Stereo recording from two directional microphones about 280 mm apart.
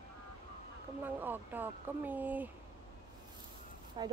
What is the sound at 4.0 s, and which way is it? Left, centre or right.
Speech, centre.